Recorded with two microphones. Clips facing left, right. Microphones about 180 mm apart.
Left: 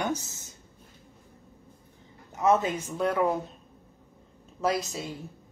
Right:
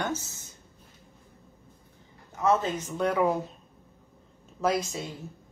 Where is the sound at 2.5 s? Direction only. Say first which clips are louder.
Left 1 dB; 10° left (ahead or behind).